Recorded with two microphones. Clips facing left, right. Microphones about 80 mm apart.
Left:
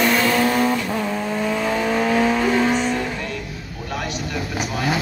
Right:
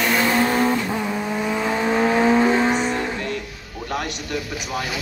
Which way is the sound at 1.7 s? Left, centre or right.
Right.